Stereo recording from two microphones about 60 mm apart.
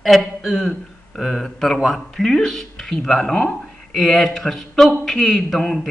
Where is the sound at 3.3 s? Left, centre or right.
Left.